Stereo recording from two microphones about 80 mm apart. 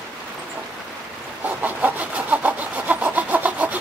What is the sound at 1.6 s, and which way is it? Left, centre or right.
Chicken, centre.